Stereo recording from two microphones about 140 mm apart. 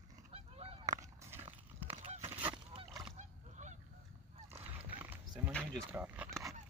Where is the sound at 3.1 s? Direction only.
60° right (ahead or behind).